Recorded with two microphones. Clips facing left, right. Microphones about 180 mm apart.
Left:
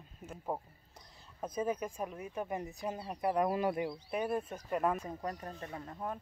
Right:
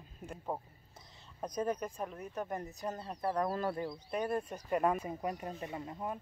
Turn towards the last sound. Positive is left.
turn(degrees=-10)  # may be behind; listen again after turning